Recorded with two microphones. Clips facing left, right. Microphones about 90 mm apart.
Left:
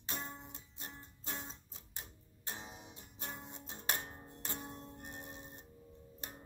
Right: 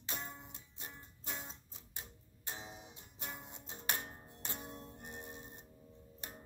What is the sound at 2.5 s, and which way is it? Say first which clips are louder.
Music: even; centre (ahead or behind).